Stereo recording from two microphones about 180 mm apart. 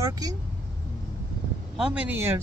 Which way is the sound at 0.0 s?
20° right (ahead or behind).